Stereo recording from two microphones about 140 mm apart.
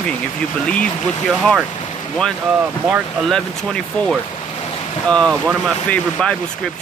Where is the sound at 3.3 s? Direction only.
5° left (ahead or behind).